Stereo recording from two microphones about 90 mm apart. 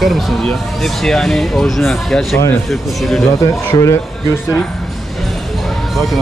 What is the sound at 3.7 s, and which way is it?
Speech, 55° left (ahead or behind).